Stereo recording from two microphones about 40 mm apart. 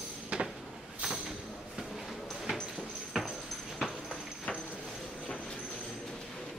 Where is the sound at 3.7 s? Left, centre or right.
Centre.